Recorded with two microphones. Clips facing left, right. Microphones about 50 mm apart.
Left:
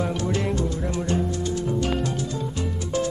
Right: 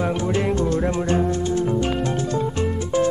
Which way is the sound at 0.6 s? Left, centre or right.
Right.